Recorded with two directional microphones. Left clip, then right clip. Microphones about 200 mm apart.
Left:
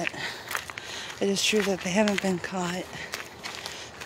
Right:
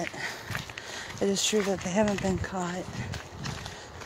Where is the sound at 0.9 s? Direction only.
Centre (ahead or behind).